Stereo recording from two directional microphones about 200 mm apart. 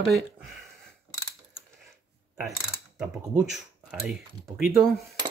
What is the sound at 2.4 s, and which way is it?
Mechanisms, centre (ahead or behind).